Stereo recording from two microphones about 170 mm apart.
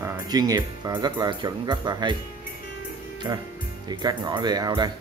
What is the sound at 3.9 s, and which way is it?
Speech, 25° right (ahead or behind).